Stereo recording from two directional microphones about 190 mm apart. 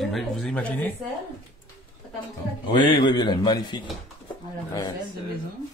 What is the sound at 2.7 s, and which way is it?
A man's voice, 25° left (ahead or behind).